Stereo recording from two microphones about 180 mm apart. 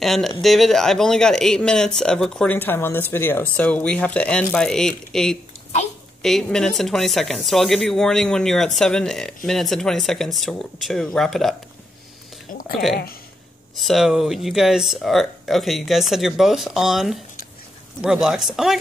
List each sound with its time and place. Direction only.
0.0 s a woman's voice: centre (ahead or behind)
12.5 s a sound: 50° left (ahead or behind)
12.9 s speech: 55° left (ahead or behind)
13.7 s a woman's voice: centre (ahead or behind)